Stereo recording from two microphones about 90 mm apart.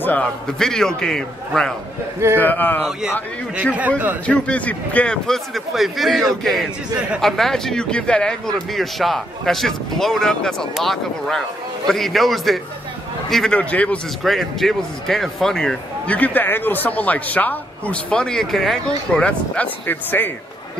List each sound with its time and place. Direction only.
0.0 s a man's voice: 20° left (ahead or behind)
0.6 s a man's voice: 5° left (ahead or behind)
2.3 s speech: 20° left (ahead or behind)
4.3 s a man's voice: 15° left (ahead or behind)
13.5 s a man's voice: 15° left (ahead or behind)
14.2 s a man's voice: centre (ahead or behind)
16.2 s a man's voice: 20° left (ahead or behind)